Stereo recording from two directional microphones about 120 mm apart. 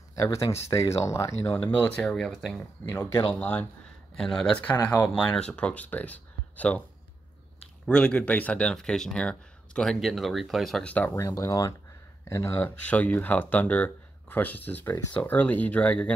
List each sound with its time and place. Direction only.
0.1 s speech: 25° left (ahead or behind); by 2.6 s 5° left (ahead or behind)
2.8 s speech: 20° left (ahead or behind)
7.8 s speech: 5° left (ahead or behind)
11.1 s speech: 25° left (ahead or behind)